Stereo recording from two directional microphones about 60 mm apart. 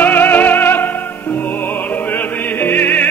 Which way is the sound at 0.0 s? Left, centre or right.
Left.